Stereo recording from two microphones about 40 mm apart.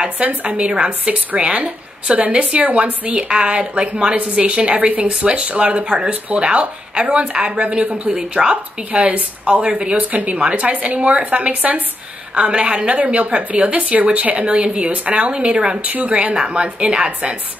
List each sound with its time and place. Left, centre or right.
0.2 s a woman's voice: right; by 8.5 s centre
8.9 s a woman's voice: right
12.9 s a woman's voice: right
15.8 s a woman's voice: right